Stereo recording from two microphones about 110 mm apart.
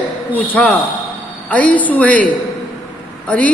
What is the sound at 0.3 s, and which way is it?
Speech, 15° left (ahead or behind).